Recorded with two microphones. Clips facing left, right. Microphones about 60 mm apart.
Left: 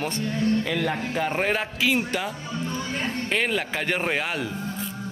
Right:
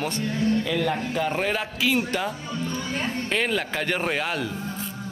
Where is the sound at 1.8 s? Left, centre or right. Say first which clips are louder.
Even; centre.